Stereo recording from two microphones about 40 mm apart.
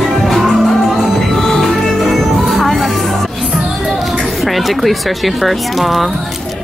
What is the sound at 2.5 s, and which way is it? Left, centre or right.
Music, centre.